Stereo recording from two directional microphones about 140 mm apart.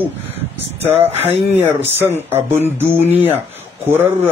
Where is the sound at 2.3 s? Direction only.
15° right (ahead or behind).